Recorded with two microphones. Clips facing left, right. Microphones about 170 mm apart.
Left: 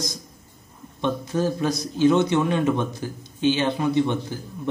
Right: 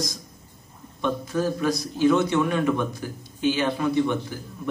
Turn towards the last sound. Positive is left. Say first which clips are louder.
# left 1 dB
turn(degrees=25)  # may be behind; listen again after turning